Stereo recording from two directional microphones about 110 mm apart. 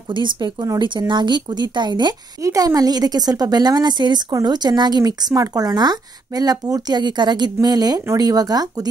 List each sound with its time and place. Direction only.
0.1 s a woman's voice: 45° right (ahead or behind)